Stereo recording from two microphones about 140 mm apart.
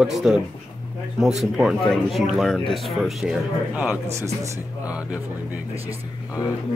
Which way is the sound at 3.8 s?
15° right (ahead or behind).